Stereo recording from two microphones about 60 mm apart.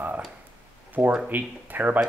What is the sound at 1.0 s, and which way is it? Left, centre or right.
Speech, centre.